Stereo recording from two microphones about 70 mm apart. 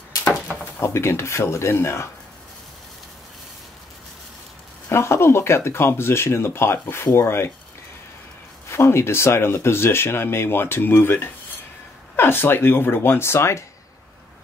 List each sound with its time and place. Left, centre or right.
0.7 s speech: left
4.8 s speech: left
8.6 s speech: left